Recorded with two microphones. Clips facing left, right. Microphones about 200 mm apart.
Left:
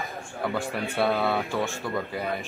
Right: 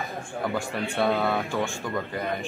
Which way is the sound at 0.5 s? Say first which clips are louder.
Left 1 dB; centre (ahead or behind).